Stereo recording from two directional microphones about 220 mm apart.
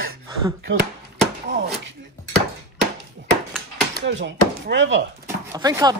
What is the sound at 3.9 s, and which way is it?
Speech, 55° right (ahead or behind).